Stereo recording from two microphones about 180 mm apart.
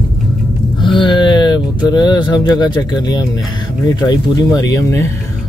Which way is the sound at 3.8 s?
20° left (ahead or behind).